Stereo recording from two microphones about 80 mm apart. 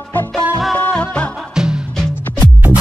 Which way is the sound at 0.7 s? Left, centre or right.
Centre.